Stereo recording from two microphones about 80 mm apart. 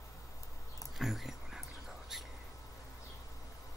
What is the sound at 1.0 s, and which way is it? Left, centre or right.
Dog, centre.